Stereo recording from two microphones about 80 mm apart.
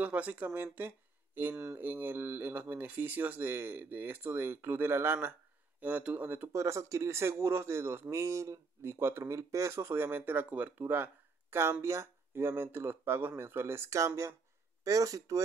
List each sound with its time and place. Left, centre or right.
0.0 s speech: centre
6.5 s speech: right
11.8 s speech: right